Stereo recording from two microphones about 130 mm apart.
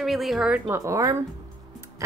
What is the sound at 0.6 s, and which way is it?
Speech, 20° right (ahead or behind).